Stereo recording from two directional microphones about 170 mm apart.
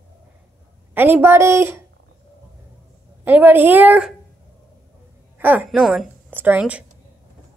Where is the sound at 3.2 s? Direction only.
10° right (ahead or behind).